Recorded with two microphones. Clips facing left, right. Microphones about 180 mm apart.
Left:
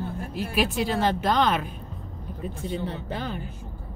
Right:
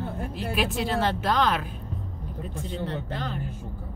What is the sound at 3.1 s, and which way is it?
Speech, 5° left (ahead or behind).